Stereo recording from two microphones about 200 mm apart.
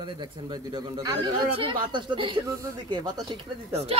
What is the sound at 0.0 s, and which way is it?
Speech, 20° right (ahead or behind).